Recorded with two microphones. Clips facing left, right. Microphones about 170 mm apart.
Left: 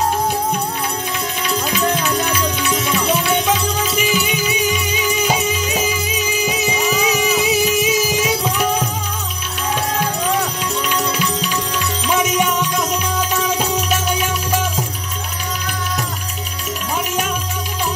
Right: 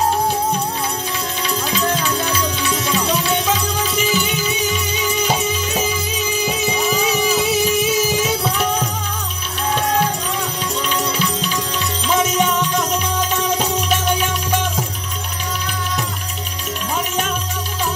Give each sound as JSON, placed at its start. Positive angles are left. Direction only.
{"t": 1.6, "sound": "music", "side_deg": 15}
{"t": 14.5, "sound": "music", "side_deg": 5}